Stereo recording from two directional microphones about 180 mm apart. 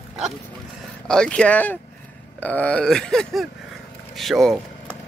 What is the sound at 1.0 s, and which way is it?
Speech, 5° left (ahead or behind).